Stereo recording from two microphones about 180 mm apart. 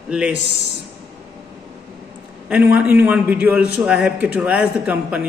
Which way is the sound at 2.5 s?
10° right (ahead or behind).